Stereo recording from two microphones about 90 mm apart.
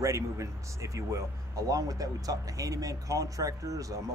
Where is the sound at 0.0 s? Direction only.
35° right (ahead or behind).